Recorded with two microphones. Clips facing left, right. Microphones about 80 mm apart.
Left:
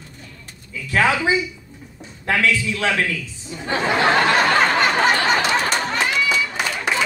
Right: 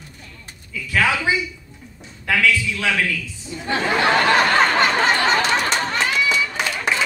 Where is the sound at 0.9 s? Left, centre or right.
Left.